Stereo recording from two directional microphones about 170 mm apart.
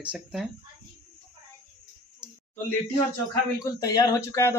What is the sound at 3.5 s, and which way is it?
Speech, 20° left (ahead or behind).